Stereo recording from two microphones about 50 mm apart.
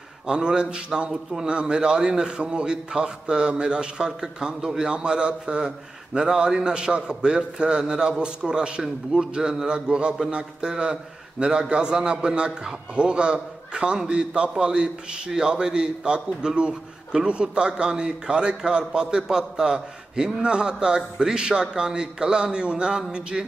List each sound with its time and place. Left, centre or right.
0.3 s a man's voice: centre